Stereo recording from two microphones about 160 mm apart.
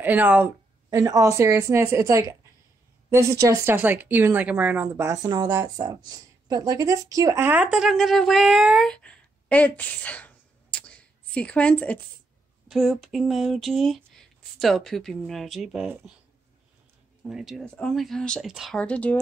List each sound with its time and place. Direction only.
0.0 s speech: 10° right (ahead or behind)
0.8 s a woman's voice: 20° right (ahead or behind); by 16.0 s 5° right (ahead or behind)
17.2 s speech: centre (ahead or behind)